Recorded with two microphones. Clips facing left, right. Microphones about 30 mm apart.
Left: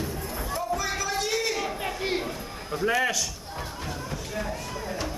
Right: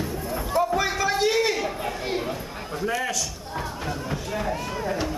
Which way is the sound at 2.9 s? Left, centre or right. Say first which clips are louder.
Left 2 dB; centre.